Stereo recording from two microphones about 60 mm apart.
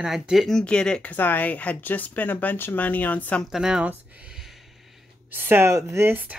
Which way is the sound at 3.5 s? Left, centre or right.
Centre.